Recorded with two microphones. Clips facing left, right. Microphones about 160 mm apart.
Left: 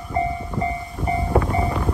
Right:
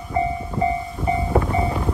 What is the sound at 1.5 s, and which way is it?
Vehicle, 20° right (ahead or behind).